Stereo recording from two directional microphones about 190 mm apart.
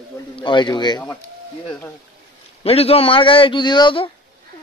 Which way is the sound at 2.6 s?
30° left (ahead or behind).